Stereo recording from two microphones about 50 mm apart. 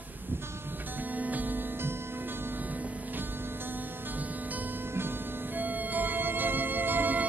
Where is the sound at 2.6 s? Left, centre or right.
Right.